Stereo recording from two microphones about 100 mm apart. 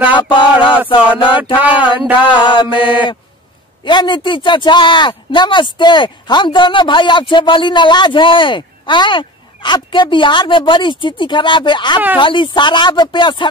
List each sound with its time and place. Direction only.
0.2 s mantra: 55° left (ahead or behind)
1.4 s a sound: 15° right (ahead or behind)
2.1 s mantra: 55° left (ahead or behind)
3.8 s speech: 50° left (ahead or behind)